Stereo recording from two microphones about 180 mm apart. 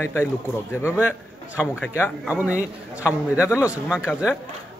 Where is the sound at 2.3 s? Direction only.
10° right (ahead or behind).